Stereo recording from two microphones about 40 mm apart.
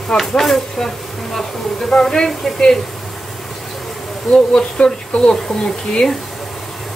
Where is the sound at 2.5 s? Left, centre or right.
Centre.